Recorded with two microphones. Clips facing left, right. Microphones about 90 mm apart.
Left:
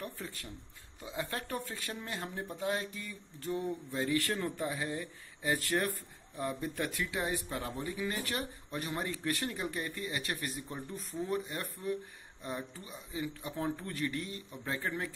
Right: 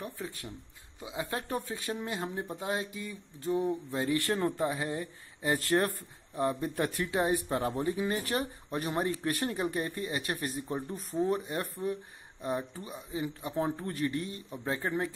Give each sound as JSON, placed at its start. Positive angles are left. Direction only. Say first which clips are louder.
{"t": 0.0, "sound": "speech", "louder": "right 3 dB", "side_deg": -15}